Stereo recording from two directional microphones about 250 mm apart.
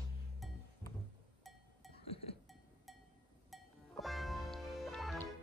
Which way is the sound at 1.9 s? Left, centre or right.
Left.